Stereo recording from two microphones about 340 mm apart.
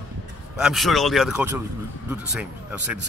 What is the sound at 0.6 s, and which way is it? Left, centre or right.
Speech, centre.